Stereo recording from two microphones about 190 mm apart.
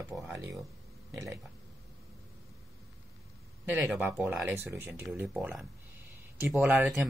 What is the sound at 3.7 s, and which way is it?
Speech, 5° right (ahead or behind).